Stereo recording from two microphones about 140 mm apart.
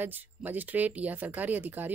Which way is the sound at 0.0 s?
15° right (ahead or behind).